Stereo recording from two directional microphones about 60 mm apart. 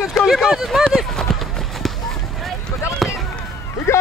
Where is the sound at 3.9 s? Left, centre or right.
Left.